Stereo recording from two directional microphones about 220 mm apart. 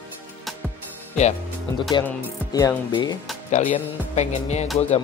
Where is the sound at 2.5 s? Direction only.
15° left (ahead or behind).